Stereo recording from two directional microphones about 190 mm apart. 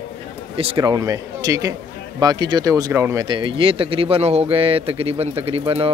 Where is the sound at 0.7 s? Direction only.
15° right (ahead or behind).